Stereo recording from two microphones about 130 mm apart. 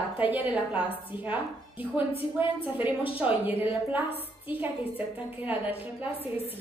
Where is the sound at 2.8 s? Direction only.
10° right (ahead or behind).